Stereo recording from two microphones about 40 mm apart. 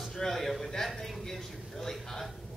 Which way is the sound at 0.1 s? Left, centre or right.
Centre.